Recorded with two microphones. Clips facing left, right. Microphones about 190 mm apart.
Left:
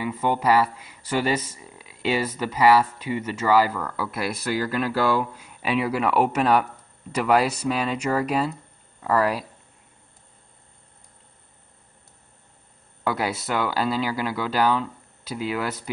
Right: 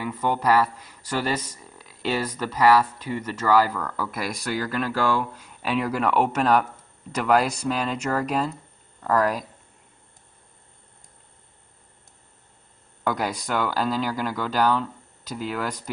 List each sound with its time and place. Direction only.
0.0 s speech: 10° left (ahead or behind)
13.0 s speech: 5° left (ahead or behind)